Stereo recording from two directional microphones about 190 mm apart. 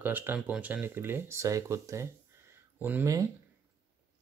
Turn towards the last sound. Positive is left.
turn(degrees=-15)  # may be behind; listen again after turning